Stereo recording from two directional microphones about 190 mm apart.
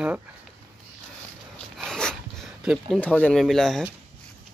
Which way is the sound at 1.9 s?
5° left (ahead or behind).